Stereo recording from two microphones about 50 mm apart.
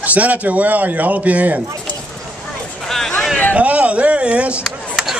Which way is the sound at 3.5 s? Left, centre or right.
Right.